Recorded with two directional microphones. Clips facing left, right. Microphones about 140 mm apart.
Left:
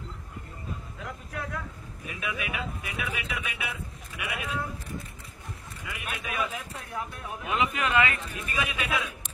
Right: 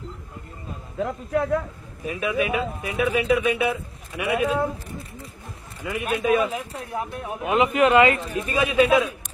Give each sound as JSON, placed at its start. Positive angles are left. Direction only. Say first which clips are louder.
{"t": 0.9, "sound": "speech", "louder": "right 17 dB", "side_deg": -35}
{"t": 5.9, "sound": "speech", "louder": "right 15 dB", "side_deg": -30}